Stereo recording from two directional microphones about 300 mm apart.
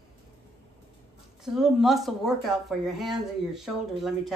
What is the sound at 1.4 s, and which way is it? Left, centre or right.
Speech, centre.